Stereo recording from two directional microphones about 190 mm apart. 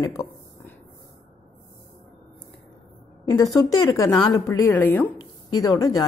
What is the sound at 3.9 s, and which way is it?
A woman's voice, 20° left (ahead or behind).